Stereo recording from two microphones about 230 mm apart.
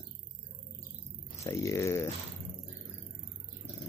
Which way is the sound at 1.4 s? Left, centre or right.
Centre.